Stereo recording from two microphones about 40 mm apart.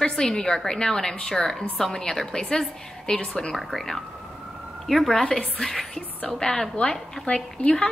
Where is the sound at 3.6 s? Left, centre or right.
Centre.